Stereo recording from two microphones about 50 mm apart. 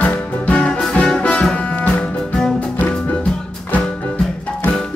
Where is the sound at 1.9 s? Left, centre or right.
Centre.